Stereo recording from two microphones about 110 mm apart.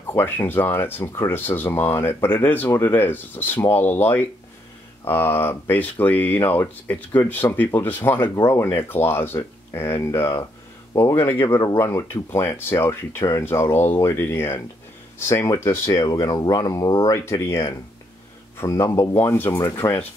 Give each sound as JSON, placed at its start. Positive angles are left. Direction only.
{"t": 0.1, "sound": "speech", "side_deg": 20}
{"t": 11.1, "sound": "speech", "side_deg": 20}
{"t": 15.9, "sound": "speech", "side_deg": 35}
{"t": 17.2, "sound": "speech", "side_deg": 25}